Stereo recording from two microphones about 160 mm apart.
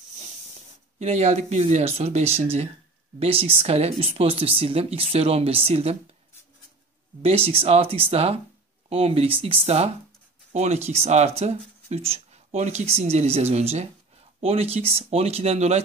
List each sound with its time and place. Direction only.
0.9 s speech: 45° right (ahead or behind)
7.2 s speech: 35° right (ahead or behind)